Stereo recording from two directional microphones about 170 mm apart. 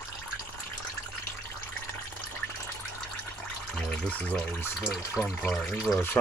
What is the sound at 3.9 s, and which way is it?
Speech, 5° left (ahead or behind).